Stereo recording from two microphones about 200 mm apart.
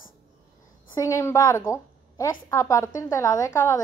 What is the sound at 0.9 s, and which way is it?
A woman's voice, 15° left (ahead or behind).